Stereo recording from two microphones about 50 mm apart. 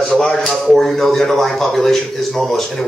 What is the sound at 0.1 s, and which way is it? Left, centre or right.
Speech, centre.